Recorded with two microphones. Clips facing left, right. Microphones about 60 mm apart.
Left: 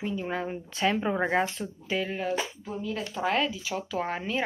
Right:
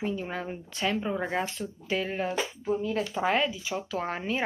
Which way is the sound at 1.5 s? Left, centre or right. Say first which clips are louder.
Even; centre.